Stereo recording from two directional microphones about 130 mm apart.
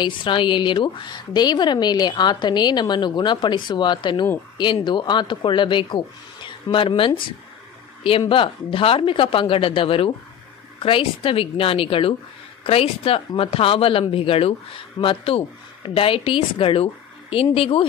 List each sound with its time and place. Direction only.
0.0 s a woman's voice: 40° left (ahead or behind)
8.3 s a woman's voice: 40° left (ahead or behind)